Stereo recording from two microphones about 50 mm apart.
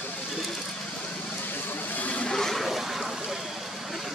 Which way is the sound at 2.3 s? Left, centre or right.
Centre.